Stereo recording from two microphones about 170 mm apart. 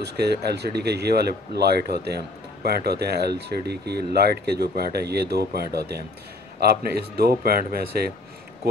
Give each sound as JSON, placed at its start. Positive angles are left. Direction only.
{"t": 0.0, "sound": "speech", "side_deg": -70}